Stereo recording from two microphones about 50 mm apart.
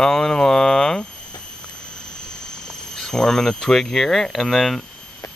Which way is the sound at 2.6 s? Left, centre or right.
Centre.